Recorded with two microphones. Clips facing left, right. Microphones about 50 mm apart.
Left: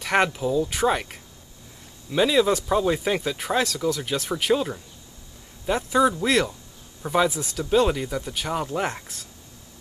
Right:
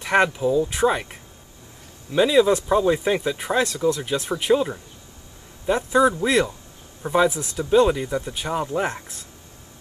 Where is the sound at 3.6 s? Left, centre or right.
Right.